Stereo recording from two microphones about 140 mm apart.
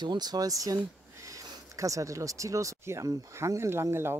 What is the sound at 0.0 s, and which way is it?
Speech, 30° right (ahead or behind).